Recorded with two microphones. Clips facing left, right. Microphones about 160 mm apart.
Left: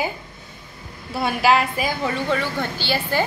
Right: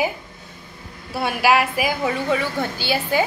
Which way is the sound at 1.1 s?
5° right (ahead or behind).